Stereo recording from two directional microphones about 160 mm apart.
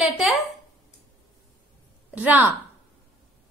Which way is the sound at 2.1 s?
10° right (ahead or behind).